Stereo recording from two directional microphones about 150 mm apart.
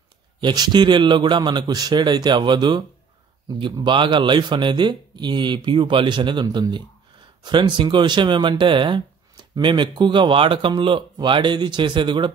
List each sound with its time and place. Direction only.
0.4 s a man's voice: 30° right (ahead or behind)